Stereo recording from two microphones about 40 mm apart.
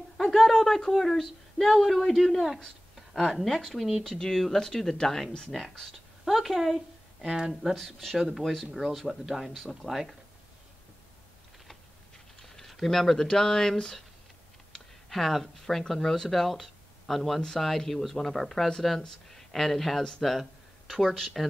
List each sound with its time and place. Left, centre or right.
0.2 s speech: centre
4.4 s a woman's voice: centre
7.2 s speech: centre
7.7 s speech: centre
12.4 s speech: centre
15.0 s speech: centre
20.0 s speech: centre
20.2 s speech: centre